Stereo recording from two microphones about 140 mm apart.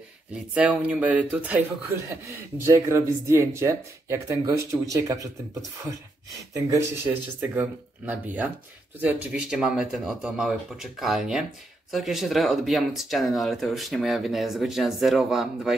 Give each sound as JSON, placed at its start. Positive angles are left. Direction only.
{"t": 0.3, "sound": "speech", "side_deg": -10}
{"t": 2.0, "sound": "speech", "side_deg": -20}
{"t": 7.1, "sound": "speech", "side_deg": -15}